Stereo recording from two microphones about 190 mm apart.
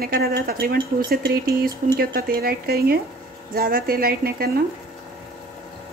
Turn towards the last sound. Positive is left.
turn(degrees=-55)  # may be behind; listen again after turning